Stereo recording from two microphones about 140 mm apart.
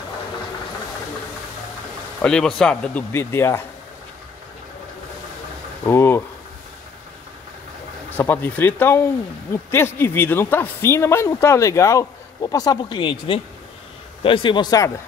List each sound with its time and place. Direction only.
2.2 s speech: 5° left (ahead or behind)
5.9 s speech: 15° left (ahead or behind)
8.1 s a man's voice: 15° left (ahead or behind)